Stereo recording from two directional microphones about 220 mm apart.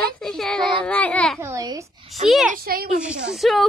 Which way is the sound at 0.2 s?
Centre (ahead or behind).